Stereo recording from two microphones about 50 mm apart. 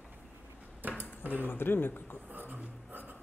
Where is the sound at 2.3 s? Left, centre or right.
Right.